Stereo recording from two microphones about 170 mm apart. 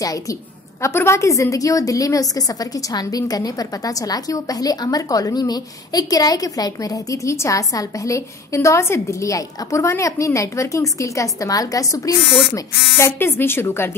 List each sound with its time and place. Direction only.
0.0 s a woman's voice: 20° left (ahead or behind)